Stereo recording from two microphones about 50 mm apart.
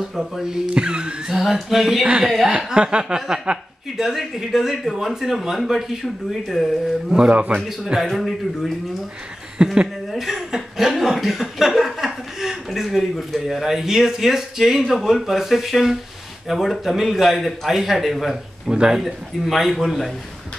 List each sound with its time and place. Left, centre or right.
0.4 s speech: centre
1.3 s speech: centre
7.2 s speech: right
7.6 s speech: centre
9.8 s speech: centre
18.7 s speech: centre
18.9 s speech: centre